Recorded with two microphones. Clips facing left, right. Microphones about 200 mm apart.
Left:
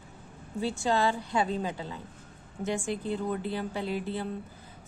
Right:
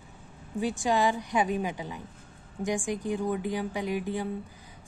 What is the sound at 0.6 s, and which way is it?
A woman's voice, 15° right (ahead or behind).